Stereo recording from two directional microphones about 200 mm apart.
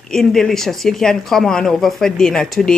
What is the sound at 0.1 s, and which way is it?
Speech, centre (ahead or behind).